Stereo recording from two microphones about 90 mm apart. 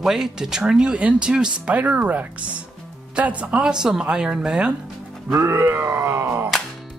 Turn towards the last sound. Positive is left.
turn(degrees=-30)  # may be behind; listen again after turning